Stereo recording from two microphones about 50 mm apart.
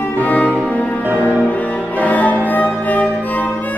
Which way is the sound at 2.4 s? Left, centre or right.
Left.